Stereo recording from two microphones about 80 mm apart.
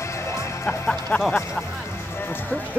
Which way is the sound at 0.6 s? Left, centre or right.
Centre.